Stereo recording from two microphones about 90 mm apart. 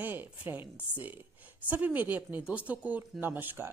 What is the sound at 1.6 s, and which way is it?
Speech, 20° right (ahead or behind).